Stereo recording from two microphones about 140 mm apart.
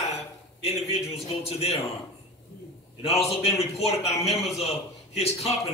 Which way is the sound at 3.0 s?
45° left (ahead or behind).